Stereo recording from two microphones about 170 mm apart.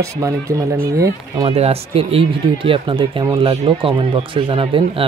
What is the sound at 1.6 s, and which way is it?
Speech, 35° right (ahead or behind).